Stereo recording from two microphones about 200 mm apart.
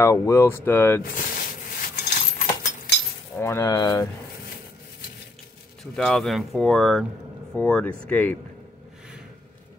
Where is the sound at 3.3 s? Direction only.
10° left (ahead or behind).